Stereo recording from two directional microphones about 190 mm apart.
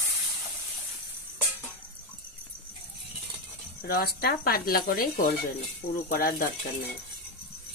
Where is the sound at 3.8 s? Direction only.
55° left (ahead or behind).